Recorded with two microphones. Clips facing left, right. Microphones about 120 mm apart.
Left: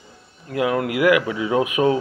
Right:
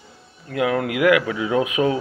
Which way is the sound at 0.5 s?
30° left (ahead or behind).